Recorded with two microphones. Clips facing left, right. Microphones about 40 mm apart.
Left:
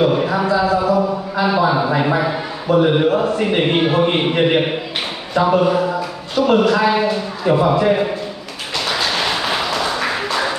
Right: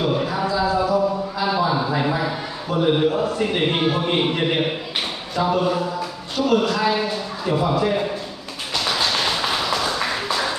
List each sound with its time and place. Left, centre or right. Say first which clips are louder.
0.0 s a sound: left 6 dB; left
5.3 s a man's voice: left 6 dB; left
9.5 s tap: left 3 dB; left